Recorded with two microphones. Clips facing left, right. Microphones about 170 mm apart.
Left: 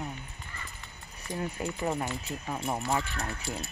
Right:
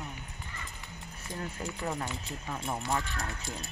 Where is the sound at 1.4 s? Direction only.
15° left (ahead or behind).